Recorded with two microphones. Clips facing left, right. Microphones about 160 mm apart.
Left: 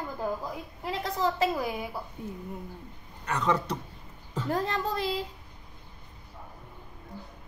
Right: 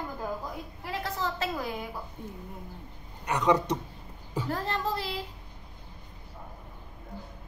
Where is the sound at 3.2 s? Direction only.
15° right (ahead or behind).